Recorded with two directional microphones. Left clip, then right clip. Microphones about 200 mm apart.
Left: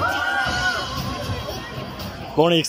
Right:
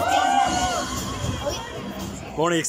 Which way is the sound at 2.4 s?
10° left (ahead or behind).